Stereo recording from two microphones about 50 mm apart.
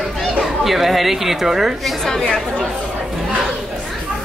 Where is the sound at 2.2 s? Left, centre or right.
Centre.